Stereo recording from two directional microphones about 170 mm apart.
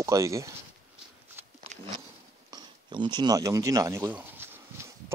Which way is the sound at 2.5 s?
25° right (ahead or behind).